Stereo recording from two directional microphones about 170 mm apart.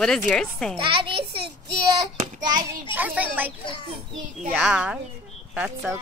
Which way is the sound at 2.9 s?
10° right (ahead or behind).